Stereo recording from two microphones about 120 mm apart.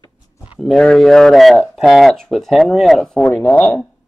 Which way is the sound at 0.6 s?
5° left (ahead or behind).